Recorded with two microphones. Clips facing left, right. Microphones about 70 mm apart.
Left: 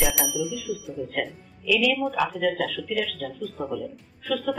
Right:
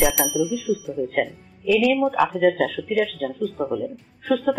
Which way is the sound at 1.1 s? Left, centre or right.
Right.